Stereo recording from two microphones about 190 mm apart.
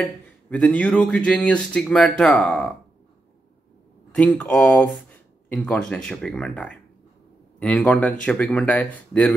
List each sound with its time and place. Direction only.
0.5 s speech: 5° left (ahead or behind)
4.1 s speech: 5° left (ahead or behind)